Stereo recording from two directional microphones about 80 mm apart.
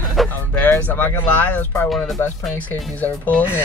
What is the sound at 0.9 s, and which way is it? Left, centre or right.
Speech, left.